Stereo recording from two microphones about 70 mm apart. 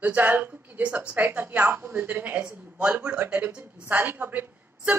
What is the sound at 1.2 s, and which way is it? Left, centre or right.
A woman's voice, right.